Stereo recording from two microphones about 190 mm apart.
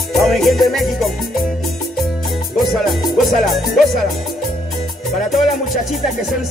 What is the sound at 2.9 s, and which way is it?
Music, centre (ahead or behind).